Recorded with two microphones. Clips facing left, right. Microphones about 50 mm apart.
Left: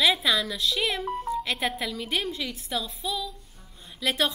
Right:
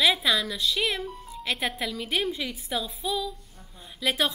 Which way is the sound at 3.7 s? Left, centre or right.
Centre.